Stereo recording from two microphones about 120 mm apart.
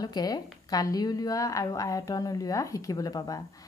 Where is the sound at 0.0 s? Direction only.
35° left (ahead or behind).